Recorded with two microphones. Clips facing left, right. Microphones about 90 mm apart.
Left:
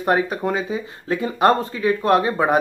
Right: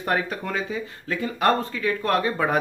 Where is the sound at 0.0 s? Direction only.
20° left (ahead or behind).